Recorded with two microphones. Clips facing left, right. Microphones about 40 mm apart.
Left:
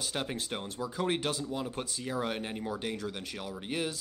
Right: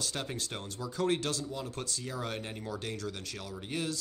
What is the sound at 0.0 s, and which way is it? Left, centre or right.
Speech, centre.